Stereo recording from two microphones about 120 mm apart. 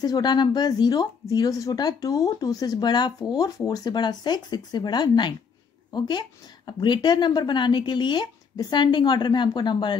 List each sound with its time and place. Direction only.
0.0 s speech: 35° left (ahead or behind)